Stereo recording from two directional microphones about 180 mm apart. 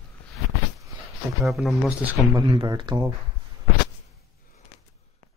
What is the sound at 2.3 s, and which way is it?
Speech, 25° right (ahead or behind).